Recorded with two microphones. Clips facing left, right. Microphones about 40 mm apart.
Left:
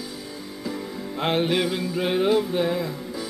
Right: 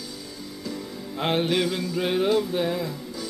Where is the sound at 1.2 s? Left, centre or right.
Centre.